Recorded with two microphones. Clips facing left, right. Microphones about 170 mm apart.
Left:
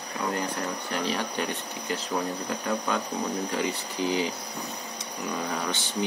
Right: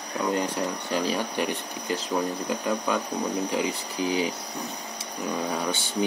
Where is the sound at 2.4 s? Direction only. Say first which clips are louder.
Right 2 dB; 15° right (ahead or behind).